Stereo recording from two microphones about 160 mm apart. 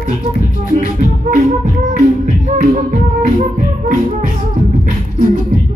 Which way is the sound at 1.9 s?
55° right (ahead or behind).